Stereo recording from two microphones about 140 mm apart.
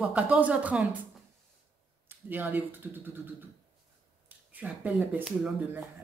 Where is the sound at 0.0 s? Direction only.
10° right (ahead or behind).